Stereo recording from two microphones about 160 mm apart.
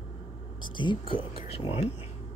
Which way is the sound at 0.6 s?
30° left (ahead or behind).